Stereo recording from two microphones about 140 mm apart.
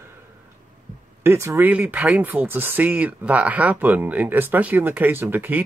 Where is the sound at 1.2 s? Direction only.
20° right (ahead or behind).